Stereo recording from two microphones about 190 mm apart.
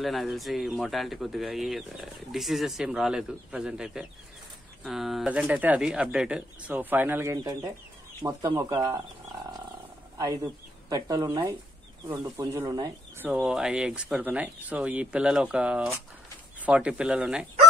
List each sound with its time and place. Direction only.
0.0 s speech: centre (ahead or behind); by 9.0 s 15° right (ahead or behind)
10.1 s speech: 20° right (ahead or behind)
13.3 s speech: 5° right (ahead or behind)